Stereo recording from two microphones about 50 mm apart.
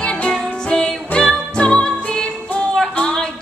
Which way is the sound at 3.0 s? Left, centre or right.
Centre.